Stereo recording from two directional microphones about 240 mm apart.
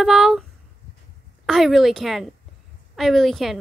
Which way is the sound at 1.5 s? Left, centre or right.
Centre.